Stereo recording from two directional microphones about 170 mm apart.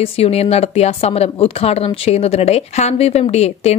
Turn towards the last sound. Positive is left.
turn(degrees=40)  # may be behind; listen again after turning